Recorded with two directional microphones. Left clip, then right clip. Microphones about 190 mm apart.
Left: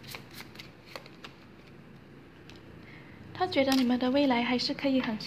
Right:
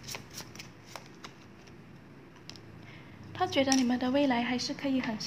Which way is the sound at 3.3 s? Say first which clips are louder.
Left 1 dB; 5° left (ahead or behind).